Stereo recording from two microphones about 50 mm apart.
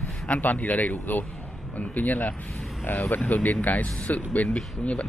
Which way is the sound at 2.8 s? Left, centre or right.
Left.